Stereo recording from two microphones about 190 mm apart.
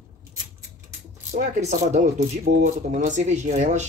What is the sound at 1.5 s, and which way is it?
Speech, 35° right (ahead or behind).